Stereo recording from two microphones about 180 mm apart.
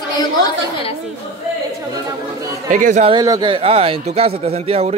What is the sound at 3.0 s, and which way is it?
A man's voice, 20° right (ahead or behind).